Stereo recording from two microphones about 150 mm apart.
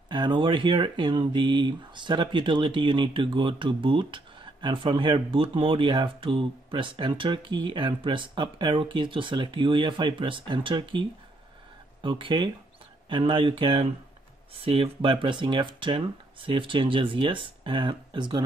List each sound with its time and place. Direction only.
0.1 s speech: 30° right (ahead or behind)